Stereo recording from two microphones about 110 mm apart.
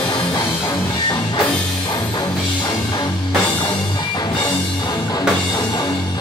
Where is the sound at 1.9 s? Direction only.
40° left (ahead or behind).